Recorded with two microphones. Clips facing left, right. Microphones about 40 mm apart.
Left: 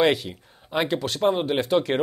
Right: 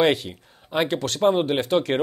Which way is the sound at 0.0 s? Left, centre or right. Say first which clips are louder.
Right 1 dB; right.